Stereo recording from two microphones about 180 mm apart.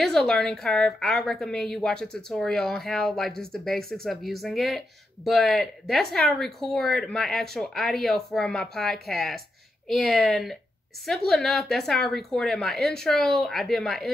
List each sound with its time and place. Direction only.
0.0 s a woman's voice: 5° left (ahead or behind)